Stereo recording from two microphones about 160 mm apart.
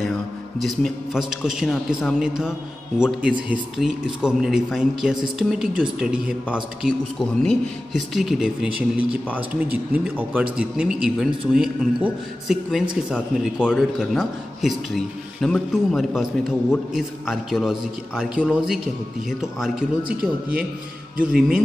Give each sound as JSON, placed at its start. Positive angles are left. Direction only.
{"t": 0.6, "sound": "speech", "side_deg": 0}
{"t": 20.0, "sound": "speech", "side_deg": -65}